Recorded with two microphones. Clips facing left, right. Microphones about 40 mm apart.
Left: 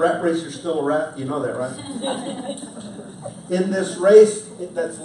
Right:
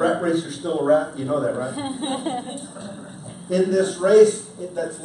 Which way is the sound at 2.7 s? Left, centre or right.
Centre.